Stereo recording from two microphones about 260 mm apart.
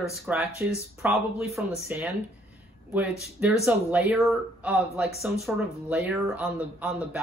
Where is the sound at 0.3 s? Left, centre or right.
Centre.